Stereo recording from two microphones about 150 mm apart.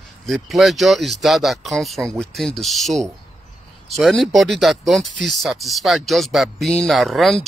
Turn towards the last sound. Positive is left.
turn(degrees=0)  # may be behind; listen again after turning